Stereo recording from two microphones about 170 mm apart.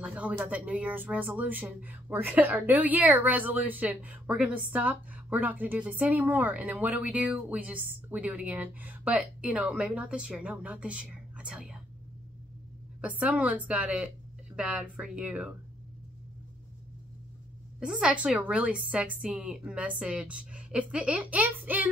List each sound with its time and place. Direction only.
0.0 s speech: 5° right (ahead or behind)
13.0 s speech: 10° right (ahead or behind)
17.7 s speech: 5° right (ahead or behind)